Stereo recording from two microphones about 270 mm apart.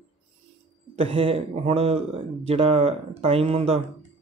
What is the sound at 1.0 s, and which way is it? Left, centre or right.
Speech, centre.